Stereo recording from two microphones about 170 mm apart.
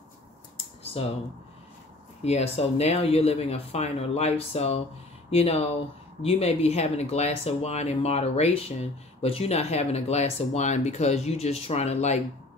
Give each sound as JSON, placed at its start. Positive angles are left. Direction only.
{"t": 1.0, "sound": "speech", "side_deg": 35}
{"t": 2.2, "sound": "speech", "side_deg": 40}